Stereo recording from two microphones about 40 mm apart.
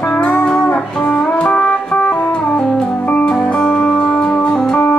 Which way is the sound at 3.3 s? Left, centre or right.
Left.